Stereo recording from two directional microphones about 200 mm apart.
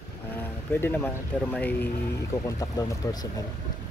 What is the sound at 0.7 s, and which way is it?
Speech, 10° left (ahead or behind).